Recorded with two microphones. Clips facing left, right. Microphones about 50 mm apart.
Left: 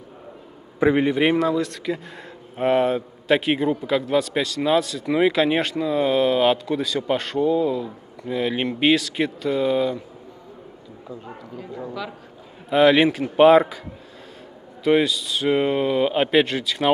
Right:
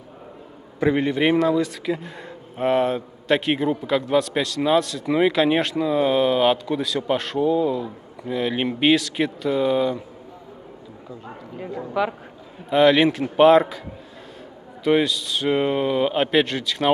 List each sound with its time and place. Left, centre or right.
0.7 s a man's voice: centre
11.9 s a man's voice: right
12.6 s a man's voice: centre
14.8 s a man's voice: centre